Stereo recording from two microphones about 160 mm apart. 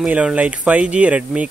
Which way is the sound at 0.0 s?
5° right (ahead or behind).